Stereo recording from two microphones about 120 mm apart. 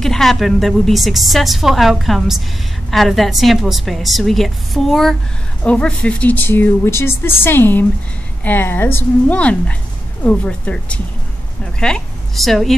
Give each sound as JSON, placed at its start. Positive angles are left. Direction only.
{"t": 0.0, "sound": "a woman's voice", "side_deg": 5}